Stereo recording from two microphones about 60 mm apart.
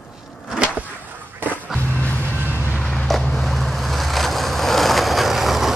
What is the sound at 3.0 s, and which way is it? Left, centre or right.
Vehicle, centre.